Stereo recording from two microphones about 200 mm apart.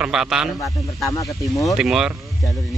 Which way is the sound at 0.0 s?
5° right (ahead or behind).